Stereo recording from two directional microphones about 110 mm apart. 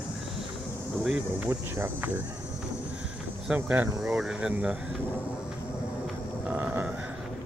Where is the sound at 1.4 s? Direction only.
15° right (ahead or behind).